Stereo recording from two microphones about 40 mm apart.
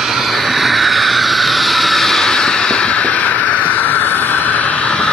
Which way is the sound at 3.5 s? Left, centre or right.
Left.